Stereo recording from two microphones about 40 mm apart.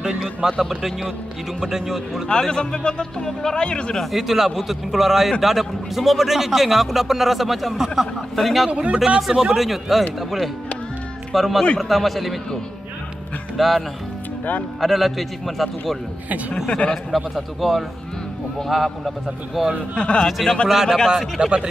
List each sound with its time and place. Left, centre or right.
0.0 s speech: centre
0.5 s a man's voice: centre
2.5 s speech: left
4.0 s a man's voice: centre
8.6 s speech: right
9.6 s a man's voice: centre
11.3 s a man's voice: centre
13.6 s a man's voice: centre
16.6 s speech: left
17.1 s a man's voice: centre
19.2 s speech: centre
20.0 s speech: left
20.6 s speech: centre
21.4 s speech: right